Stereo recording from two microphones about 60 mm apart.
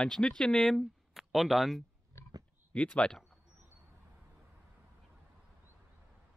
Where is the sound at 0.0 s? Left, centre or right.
Centre.